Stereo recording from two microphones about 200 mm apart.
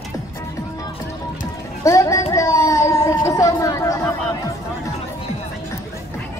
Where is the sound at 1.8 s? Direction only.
15° left (ahead or behind).